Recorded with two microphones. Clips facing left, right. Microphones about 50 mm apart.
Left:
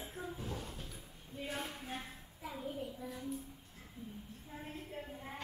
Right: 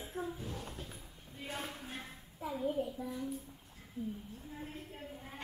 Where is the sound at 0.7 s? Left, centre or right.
Right.